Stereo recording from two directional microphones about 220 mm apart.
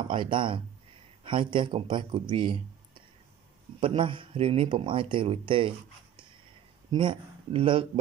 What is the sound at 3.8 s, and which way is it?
Speech, 25° right (ahead or behind).